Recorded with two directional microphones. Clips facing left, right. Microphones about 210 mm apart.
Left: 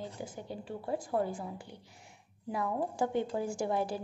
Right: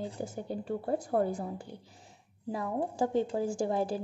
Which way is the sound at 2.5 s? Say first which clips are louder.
Right 1 dB; 35° right (ahead or behind).